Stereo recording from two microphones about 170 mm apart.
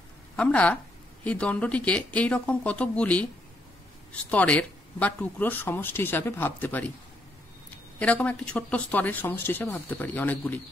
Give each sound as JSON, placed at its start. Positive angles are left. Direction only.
{"t": 0.4, "sound": "speech", "side_deg": 5}